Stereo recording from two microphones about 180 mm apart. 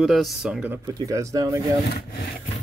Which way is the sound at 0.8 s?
20° right (ahead or behind).